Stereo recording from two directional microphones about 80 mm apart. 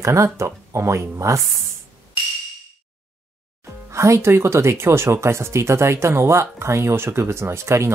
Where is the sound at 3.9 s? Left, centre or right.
Right.